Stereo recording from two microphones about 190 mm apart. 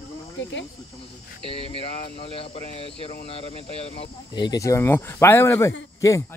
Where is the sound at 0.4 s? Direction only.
75° left (ahead or behind).